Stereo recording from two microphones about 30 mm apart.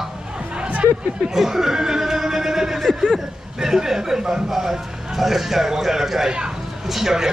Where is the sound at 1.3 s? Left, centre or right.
Centre.